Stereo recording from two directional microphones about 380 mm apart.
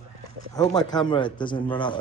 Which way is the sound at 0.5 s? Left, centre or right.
Centre.